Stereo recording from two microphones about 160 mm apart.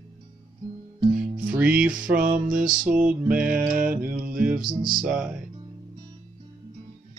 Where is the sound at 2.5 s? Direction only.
60° right (ahead or behind).